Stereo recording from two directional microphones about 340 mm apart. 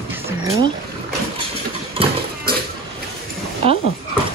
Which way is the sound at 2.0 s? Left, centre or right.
Centre.